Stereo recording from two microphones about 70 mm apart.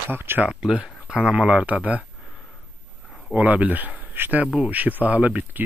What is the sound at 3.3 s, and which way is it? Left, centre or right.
Speech, right.